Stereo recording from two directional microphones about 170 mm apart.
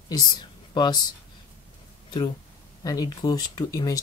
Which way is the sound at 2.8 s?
20° left (ahead or behind).